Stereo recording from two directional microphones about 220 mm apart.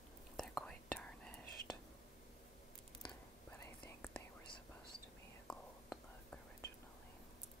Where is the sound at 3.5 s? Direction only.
10° left (ahead or behind).